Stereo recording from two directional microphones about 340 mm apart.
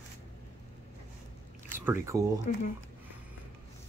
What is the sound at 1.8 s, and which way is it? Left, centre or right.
Speech, centre.